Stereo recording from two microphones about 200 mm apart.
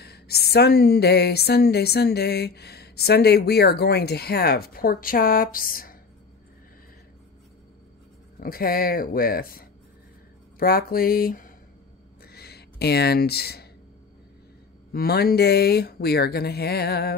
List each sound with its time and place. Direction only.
0.0 s a woman's voice: 50° left (ahead or behind)
8.4 s a woman's voice: 45° left (ahead or behind)
12.2 s a sound: 50° left (ahead or behind)
14.9 s a woman's voice: 50° left (ahead or behind)